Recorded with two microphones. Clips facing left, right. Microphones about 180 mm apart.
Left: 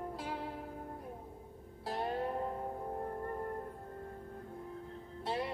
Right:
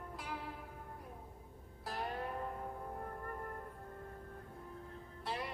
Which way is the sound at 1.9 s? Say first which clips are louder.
Left 5 dB; 30° left (ahead or behind).